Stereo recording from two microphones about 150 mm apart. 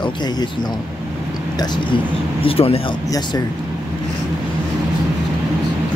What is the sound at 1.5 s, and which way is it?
Speech, 30° left (ahead or behind).